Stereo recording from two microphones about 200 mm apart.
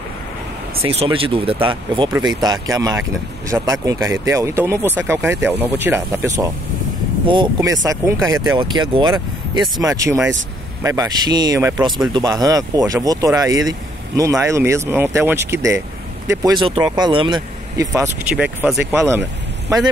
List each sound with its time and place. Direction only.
0.8 s speech: 30° right (ahead or behind); by 19.2 s 10° right (ahead or behind)